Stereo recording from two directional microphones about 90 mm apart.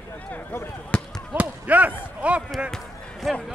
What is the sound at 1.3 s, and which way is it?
Basketball bounce, 15° right (ahead or behind).